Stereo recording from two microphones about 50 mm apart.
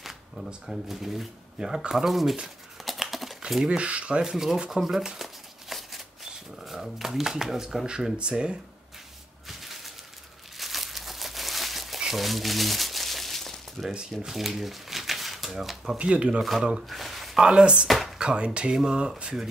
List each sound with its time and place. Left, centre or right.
0.7 s speech: centre
2.8 s typing: centre
3.6 s speech: right
4.2 s speech: centre
5.2 s shuffling cards: centre
9.5 s a sound: centre
10.6 s crumpling: centre
14.2 s speech: centre
16.0 s speech: right
16.9 s a sound: centre
17.4 s speech: centre
17.8 s speech: centre
18.1 s speech: centre